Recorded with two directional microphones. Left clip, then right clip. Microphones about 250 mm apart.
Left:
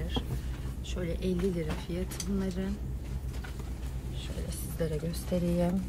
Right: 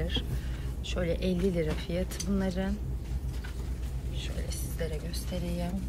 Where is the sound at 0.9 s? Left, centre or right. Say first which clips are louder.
Right 3 dB; centre.